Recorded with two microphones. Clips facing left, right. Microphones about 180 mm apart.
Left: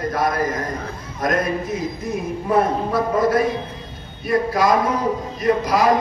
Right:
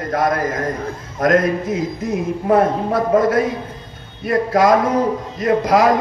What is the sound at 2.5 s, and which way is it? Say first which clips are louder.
A man's voice: right 3 dB; 55° right (ahead or behind).